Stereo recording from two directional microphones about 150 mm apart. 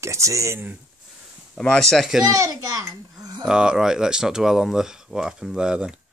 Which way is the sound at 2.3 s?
25° right (ahead or behind).